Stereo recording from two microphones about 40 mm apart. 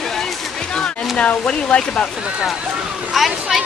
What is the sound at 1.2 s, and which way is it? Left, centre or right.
Speech, left.